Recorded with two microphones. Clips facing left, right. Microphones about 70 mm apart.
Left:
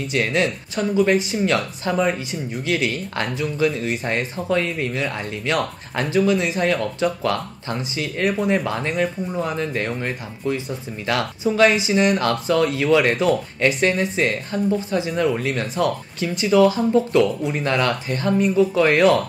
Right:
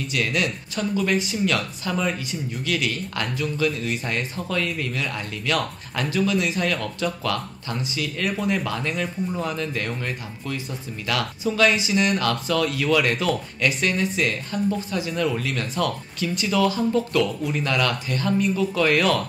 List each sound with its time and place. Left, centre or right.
0.1 s speech: left